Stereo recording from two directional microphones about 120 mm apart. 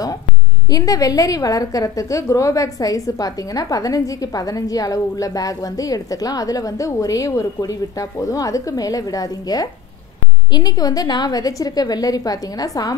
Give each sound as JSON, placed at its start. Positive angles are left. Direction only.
{"t": 0.7, "sound": "a woman's voice", "side_deg": 30}